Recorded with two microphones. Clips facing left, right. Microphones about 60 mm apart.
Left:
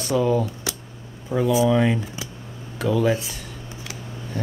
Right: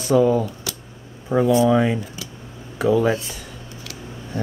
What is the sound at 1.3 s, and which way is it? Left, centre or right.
Speech, right.